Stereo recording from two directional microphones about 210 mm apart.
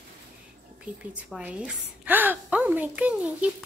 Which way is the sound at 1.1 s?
5° right (ahead or behind).